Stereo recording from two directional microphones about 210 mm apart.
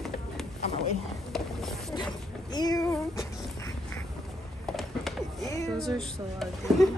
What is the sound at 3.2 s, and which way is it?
Duck, 15° left (ahead or behind).